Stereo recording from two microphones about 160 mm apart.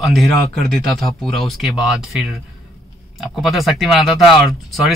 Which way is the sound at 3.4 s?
Centre (ahead or behind).